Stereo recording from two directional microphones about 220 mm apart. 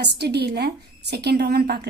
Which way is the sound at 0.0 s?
50° right (ahead or behind).